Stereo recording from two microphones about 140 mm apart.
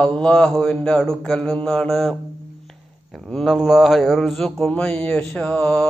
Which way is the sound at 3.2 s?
Centre (ahead or behind).